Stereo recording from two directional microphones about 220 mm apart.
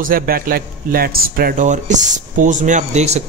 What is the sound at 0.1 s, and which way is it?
Speech, 40° right (ahead or behind).